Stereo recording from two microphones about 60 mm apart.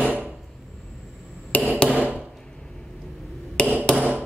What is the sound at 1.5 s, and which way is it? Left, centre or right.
Hammer, left.